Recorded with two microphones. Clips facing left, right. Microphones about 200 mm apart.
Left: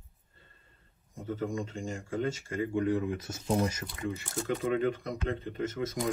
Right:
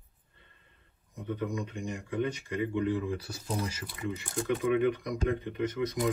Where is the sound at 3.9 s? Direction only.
15° right (ahead or behind).